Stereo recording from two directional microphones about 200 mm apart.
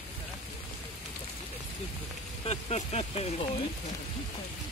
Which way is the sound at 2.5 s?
30° left (ahead or behind).